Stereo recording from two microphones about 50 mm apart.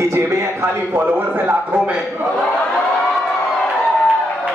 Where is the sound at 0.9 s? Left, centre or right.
Right.